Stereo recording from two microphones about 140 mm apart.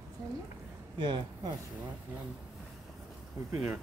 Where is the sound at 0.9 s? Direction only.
35° right (ahead or behind).